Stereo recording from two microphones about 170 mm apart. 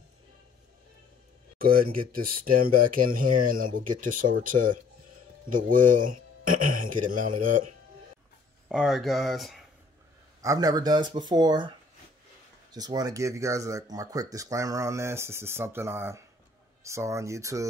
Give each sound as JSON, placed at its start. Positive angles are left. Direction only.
{"t": 1.6, "sound": "speech", "side_deg": -60}
{"t": 8.6, "sound": "speech", "side_deg": 0}
{"t": 10.4, "sound": "speech", "side_deg": -20}
{"t": 12.7, "sound": "speech", "side_deg": -25}